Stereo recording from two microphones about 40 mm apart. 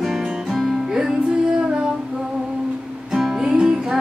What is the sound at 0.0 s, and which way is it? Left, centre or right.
Music, centre.